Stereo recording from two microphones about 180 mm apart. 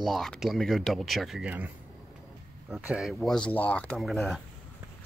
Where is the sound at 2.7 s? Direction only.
Centre (ahead or behind).